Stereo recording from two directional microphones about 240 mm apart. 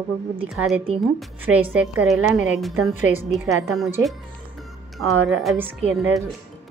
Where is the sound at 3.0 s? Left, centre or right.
Left.